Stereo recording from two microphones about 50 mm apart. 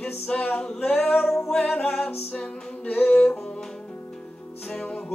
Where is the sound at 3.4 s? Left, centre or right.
Centre.